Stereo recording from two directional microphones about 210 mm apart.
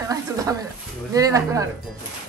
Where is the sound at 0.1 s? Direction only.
15° right (ahead or behind).